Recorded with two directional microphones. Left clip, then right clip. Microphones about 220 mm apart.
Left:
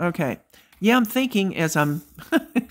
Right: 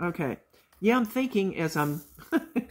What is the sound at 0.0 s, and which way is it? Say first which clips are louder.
Speech: left 6 dB; 50° left (ahead or behind).